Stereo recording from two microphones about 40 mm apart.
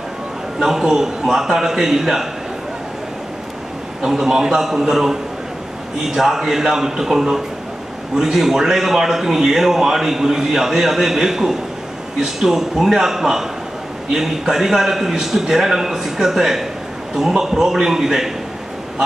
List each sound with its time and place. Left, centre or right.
0.6 s a man's voice: centre
4.0 s a man's voice: centre